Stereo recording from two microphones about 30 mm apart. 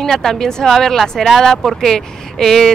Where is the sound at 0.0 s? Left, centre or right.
Centre.